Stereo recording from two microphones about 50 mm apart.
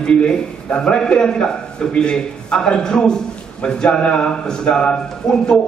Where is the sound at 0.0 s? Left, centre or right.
Centre.